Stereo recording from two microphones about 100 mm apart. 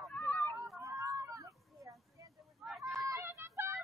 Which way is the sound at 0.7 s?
30° right (ahead or behind).